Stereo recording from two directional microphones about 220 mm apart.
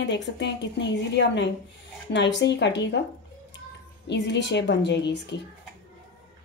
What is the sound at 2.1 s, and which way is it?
Speech, 55° left (ahead or behind).